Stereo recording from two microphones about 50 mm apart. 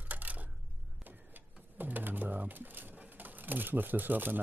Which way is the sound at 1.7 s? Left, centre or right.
Right.